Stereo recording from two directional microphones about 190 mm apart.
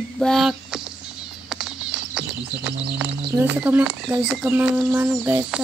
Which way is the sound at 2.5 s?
60° right (ahead or behind).